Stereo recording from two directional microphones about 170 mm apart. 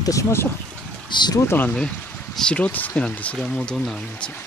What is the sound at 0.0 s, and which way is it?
Speech, 20° left (ahead or behind).